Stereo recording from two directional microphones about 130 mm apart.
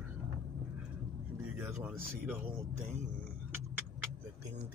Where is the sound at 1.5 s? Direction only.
15° right (ahead or behind).